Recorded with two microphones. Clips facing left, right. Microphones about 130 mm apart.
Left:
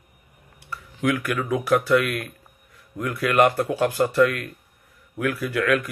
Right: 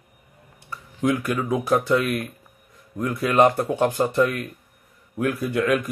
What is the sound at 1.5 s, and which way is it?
Speech, 25° right (ahead or behind).